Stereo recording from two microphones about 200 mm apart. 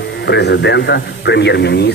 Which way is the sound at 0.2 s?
60° left (ahead or behind).